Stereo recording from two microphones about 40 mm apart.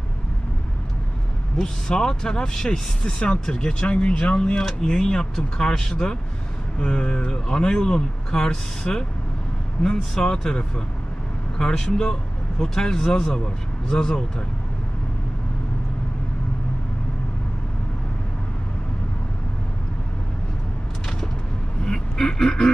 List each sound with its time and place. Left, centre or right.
1.6 s speech: centre
4.6 s a man's voice: centre
21.8 s a sound: centre